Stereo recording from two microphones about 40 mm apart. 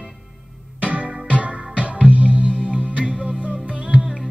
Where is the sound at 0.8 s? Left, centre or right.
Right.